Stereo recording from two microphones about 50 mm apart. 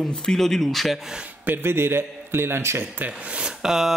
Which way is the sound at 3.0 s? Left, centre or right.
Right.